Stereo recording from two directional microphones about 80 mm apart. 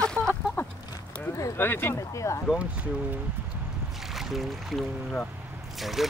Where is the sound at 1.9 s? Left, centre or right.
Left.